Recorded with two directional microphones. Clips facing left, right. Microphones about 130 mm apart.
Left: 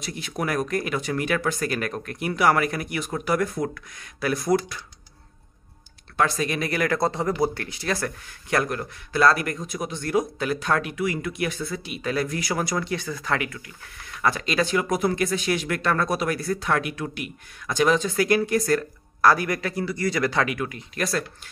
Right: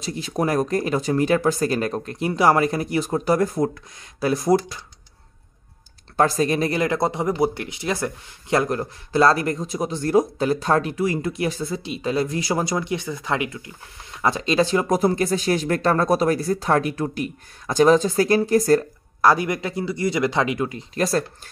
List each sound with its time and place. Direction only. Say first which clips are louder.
0.0 s speech: right 5 dB; 30° right (ahead or behind)
6.1 s speech: right 5 dB; 35° right (ahead or behind)